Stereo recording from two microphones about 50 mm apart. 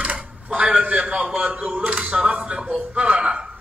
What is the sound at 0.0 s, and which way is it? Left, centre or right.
A man's voice, right.